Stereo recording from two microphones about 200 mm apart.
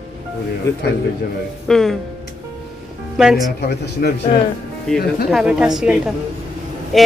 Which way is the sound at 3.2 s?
Centre (ahead or behind).